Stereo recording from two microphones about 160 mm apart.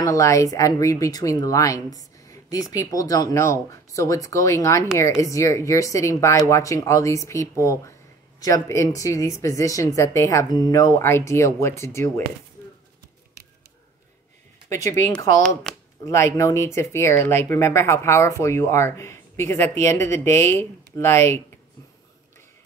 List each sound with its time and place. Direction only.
0.0 s a woman's voice: 20° left (ahead or behind)
14.7 s a woman's voice: 20° left (ahead or behind)
15.7 s a sound: 5° left (ahead or behind)
16.1 s speech: 20° left (ahead or behind)